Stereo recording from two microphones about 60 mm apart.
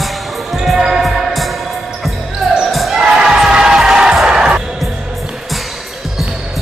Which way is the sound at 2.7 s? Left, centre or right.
Centre.